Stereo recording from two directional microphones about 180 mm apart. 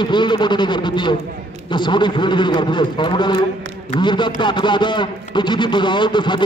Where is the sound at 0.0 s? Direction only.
25° left (ahead or behind).